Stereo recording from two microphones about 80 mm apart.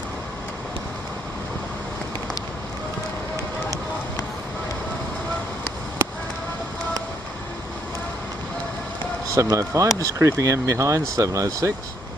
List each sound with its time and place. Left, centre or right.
9.3 s speech: right